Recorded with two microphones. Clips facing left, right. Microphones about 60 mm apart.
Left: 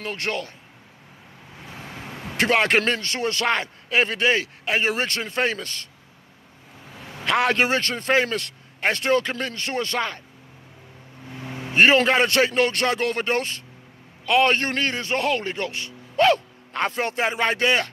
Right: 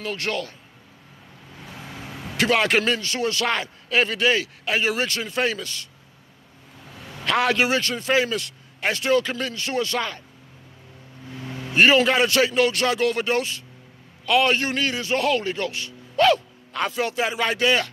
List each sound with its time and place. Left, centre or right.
0.0 s speech: left
2.3 s a man's voice: left
7.2 s a man's voice: left
11.3 s vehicle: left
11.7 s a man's voice: left